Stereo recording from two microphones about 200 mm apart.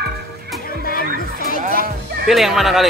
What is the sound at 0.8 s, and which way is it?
Chatter, 45° left (ahead or behind).